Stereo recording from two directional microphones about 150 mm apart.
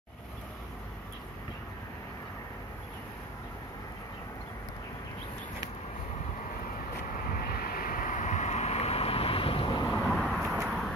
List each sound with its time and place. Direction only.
7.3 s vehicle: 80° left; by 10.0 s 30° left (ahead or behind)
10.0 s vehicle: centre (ahead or behind)